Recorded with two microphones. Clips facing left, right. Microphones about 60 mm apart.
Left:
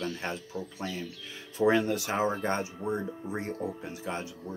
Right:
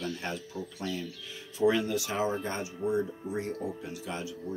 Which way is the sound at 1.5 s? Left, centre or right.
Left.